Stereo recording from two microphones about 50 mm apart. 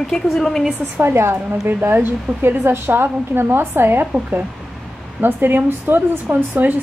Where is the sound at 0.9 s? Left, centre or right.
Right.